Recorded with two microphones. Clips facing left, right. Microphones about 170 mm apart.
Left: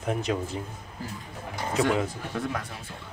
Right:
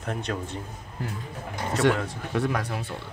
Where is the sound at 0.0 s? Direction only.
5° left (ahead or behind).